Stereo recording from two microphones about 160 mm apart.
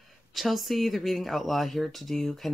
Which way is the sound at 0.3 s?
Centre (ahead or behind).